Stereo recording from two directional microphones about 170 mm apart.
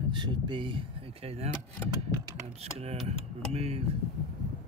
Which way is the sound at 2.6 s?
35° right (ahead or behind).